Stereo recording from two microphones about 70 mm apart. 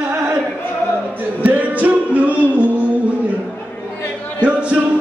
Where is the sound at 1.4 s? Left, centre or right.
Right.